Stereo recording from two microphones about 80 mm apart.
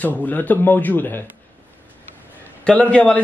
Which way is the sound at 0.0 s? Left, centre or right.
Left.